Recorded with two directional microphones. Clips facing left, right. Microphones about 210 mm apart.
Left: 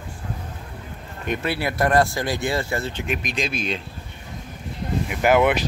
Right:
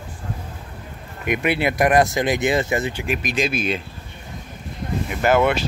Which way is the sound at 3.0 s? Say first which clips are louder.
Right 3 dB; 5° right (ahead or behind).